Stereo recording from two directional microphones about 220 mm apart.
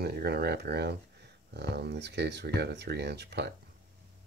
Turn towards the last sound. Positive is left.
turn(degrees=-50)  # may be behind; listen again after turning